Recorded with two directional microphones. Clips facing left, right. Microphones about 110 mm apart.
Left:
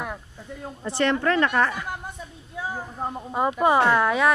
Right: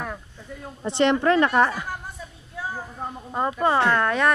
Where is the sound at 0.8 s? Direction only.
20° right (ahead or behind).